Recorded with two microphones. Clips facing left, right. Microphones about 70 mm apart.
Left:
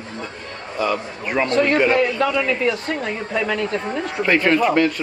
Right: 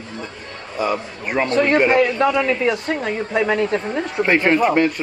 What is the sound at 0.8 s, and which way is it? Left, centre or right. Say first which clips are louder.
Speech: even; centre.